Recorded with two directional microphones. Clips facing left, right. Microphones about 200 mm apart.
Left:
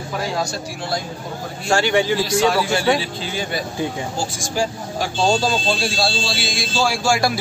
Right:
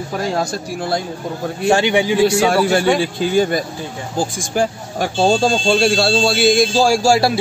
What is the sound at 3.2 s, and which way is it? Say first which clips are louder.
Speech: right 9 dB; 50° right (ahead or behind).